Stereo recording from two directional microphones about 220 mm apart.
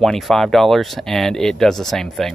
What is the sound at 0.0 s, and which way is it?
Speech, centre (ahead or behind).